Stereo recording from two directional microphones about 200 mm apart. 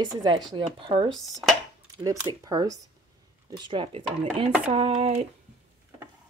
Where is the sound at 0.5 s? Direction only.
25° right (ahead or behind).